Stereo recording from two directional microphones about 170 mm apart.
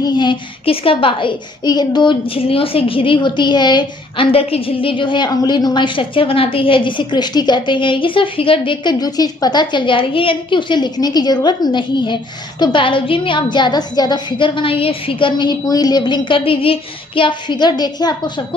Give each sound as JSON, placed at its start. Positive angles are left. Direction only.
{"t": 0.0, "sound": "a woman's voice", "side_deg": 25}